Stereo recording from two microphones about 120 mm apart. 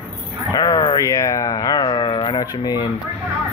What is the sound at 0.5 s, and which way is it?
Speech, 30° left (ahead or behind).